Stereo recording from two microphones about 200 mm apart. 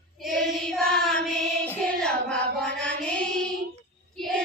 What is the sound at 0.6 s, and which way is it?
Child singing, centre (ahead or behind).